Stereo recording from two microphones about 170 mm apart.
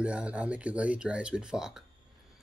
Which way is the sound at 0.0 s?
5° right (ahead or behind).